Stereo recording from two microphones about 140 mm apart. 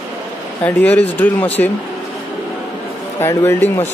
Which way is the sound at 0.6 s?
10° left (ahead or behind).